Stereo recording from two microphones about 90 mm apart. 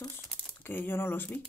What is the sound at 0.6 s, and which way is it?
Speech, 25° left (ahead or behind).